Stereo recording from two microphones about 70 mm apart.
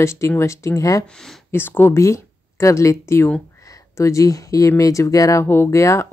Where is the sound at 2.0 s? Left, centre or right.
Left.